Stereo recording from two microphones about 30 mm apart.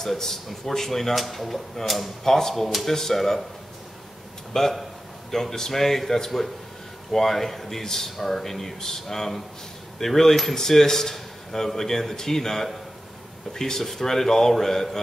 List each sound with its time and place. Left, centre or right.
0.5 s speech: centre
2.2 s speech: centre
3.2 s speech: centre
4.6 s a man's voice: centre